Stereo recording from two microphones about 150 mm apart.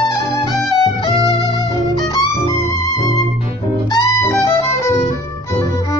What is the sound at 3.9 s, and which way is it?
Music, 20° left (ahead or behind).